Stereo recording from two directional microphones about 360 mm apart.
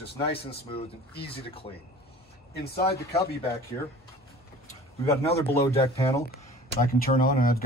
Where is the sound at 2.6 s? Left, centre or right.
Left.